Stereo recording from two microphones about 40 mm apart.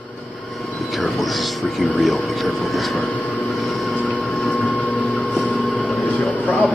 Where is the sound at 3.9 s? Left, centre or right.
Left.